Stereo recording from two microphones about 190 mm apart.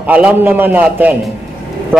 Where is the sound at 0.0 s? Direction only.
10° right (ahead or behind).